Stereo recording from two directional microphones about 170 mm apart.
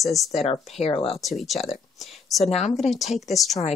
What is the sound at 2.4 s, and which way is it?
Speech, 40° left (ahead or behind).